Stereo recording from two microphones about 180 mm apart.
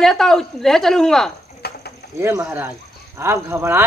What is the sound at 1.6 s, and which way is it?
Pulleys, 60° left (ahead or behind).